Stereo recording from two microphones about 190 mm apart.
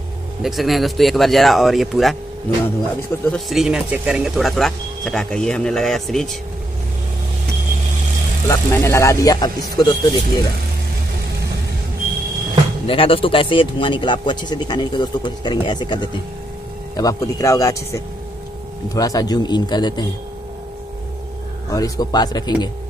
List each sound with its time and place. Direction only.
0.4 s speech: centre (ahead or behind)
3.3 s speech: centre (ahead or behind)
8.5 s a man's voice: 15° left (ahead or behind)
12.8 s a man's voice: 30° left (ahead or behind)
21.7 s a man's voice: 20° left (ahead or behind)